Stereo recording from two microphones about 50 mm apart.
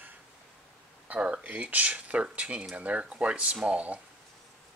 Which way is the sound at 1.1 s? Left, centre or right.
Right.